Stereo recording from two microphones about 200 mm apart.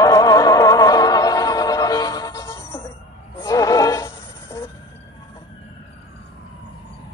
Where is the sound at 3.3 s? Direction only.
20° left (ahead or behind).